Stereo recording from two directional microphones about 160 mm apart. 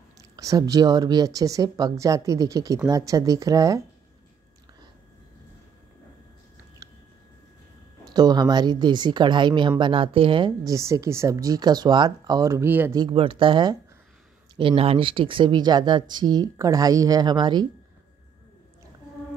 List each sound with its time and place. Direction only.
0.4 s speech: 20° right (ahead or behind)
6.8 s chewing: 20° right (ahead or behind)
8.1 s speech: 25° right (ahead or behind)
12.9 s speech: 30° right (ahead or behind)